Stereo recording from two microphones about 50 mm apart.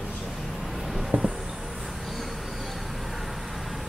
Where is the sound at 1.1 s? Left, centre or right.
Right.